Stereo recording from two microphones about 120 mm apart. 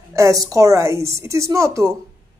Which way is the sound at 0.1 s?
25° right (ahead or behind).